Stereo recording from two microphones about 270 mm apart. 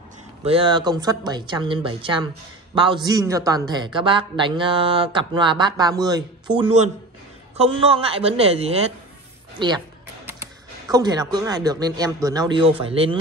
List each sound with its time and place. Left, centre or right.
0.4 s a man's voice: right